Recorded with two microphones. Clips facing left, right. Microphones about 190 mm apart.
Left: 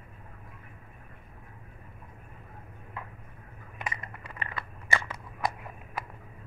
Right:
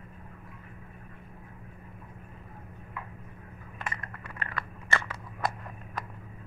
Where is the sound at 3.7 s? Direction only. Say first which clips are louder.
Left 1 dB; 15° left (ahead or behind).